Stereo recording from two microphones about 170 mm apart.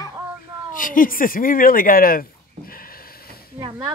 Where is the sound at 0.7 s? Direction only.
55° left (ahead or behind).